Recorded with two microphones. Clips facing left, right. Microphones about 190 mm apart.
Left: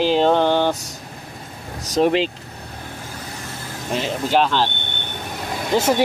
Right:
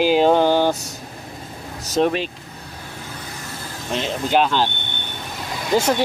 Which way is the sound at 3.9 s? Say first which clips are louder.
Even; 5° left (ahead or behind).